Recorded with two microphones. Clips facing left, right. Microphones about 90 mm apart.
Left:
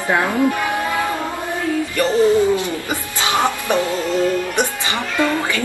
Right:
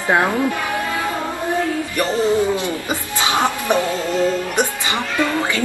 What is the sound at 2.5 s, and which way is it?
Music, 20° right (ahead or behind).